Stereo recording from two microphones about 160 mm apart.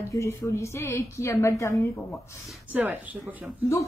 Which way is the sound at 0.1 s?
20° left (ahead or behind).